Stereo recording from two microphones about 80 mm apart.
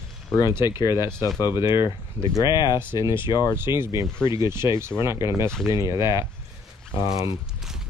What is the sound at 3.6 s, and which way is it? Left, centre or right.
Speech, right.